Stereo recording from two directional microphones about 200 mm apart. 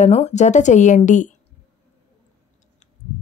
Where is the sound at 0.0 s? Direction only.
35° left (ahead or behind).